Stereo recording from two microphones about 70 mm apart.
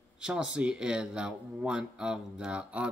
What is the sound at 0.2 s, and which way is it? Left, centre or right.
A man's voice, centre.